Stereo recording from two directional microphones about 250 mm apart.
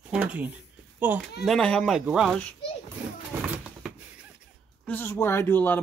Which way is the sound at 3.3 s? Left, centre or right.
Centre.